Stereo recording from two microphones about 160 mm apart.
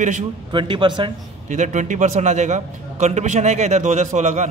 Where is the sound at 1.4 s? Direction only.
50° right (ahead or behind).